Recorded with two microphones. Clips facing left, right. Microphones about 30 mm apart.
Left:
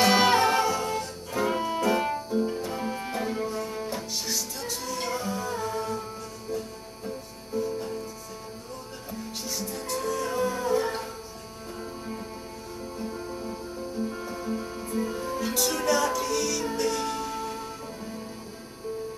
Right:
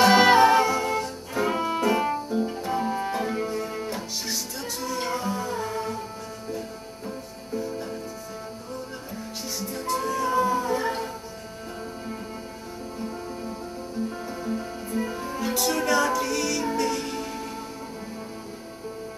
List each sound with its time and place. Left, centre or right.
0.0 s music: centre
1.9 s music: centre
7.5 s music: centre
9.6 s music: centre
13.5 s music: centre